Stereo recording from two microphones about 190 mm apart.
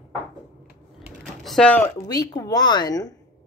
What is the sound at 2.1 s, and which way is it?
A woman's voice, 20° left (ahead or behind).